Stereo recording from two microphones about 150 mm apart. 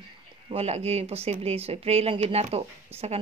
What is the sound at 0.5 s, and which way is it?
Speech, 45° right (ahead or behind).